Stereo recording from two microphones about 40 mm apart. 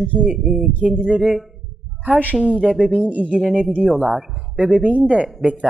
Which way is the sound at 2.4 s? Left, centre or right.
Right.